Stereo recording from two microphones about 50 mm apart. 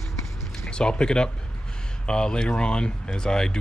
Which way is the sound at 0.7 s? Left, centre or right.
Centre.